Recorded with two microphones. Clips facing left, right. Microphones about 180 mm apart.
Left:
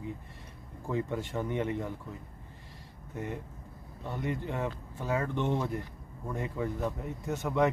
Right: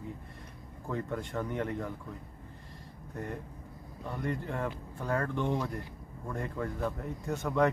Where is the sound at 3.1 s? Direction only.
5° left (ahead or behind).